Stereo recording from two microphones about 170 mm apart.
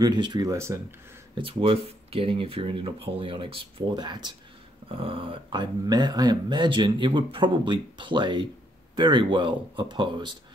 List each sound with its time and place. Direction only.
0.0 s speech: 25° right (ahead or behind)
1.3 s speech: 30° right (ahead or behind)